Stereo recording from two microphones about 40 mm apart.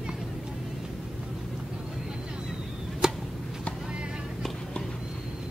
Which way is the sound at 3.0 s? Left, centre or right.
Centre.